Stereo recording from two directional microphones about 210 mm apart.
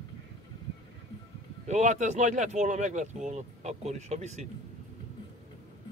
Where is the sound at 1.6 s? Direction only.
35° right (ahead or behind).